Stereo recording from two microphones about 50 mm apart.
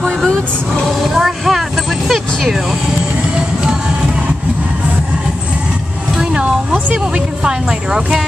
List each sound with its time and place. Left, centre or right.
0.8 s vehicle: centre
2.0 s music: centre
6.1 s a sound: centre